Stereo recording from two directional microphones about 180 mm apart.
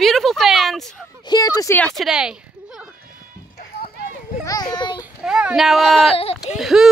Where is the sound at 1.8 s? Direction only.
Centre (ahead or behind).